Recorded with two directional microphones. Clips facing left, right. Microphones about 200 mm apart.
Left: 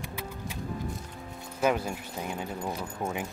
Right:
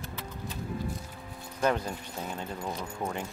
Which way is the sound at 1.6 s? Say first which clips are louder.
Left 1 dB; 10° left (ahead or behind).